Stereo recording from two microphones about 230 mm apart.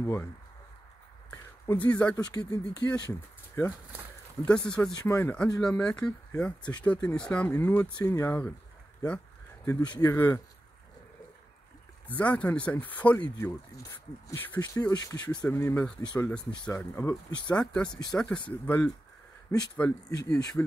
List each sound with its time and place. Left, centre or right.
0.0 s speech: centre
1.3 s speech: centre
9.7 s speech: centre
12.1 s speech: centre